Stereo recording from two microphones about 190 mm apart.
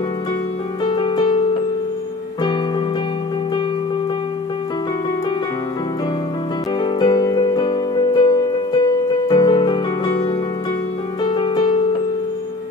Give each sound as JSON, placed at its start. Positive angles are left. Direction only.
{"t": 0.8, "sound": "music", "side_deg": 25}
{"t": 6.8, "sound": "music", "side_deg": 20}